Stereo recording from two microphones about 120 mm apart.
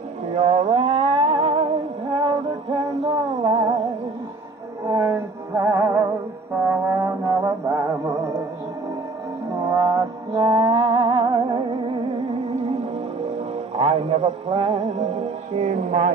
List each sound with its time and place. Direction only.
0.3 s music: 65° right (ahead or behind); by 3.8 s 45° right (ahead or behind)
4.8 s music: 25° right (ahead or behind)
9.7 s music: 30° right (ahead or behind); by 12.7 s 55° right (ahead or behind)
13.7 s music: 55° right (ahead or behind); by 16.1 s 80° right